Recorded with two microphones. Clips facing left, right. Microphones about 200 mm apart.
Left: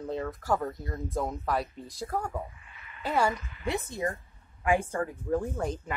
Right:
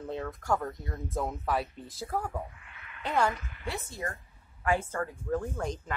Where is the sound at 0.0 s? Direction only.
Centre (ahead or behind).